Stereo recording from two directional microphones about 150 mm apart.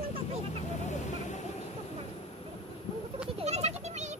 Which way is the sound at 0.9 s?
50° left (ahead or behind).